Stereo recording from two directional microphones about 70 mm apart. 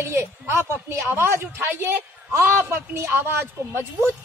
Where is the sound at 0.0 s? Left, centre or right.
Right.